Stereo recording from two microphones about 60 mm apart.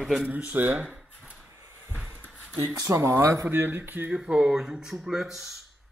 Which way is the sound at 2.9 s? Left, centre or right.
Right.